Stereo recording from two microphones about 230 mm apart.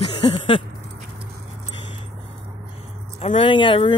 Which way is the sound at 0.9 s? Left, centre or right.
Right.